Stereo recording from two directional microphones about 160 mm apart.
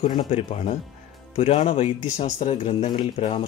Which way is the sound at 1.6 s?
40° left (ahead or behind).